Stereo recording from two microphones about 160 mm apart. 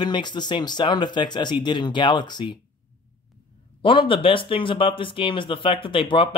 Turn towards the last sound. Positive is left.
turn(degrees=30)  # may be behind; listen again after turning